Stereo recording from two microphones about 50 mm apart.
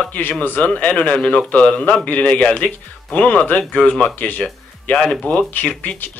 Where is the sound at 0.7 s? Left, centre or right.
Left.